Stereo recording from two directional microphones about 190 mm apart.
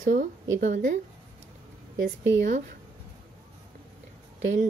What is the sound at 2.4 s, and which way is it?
Speech, 40° right (ahead or behind).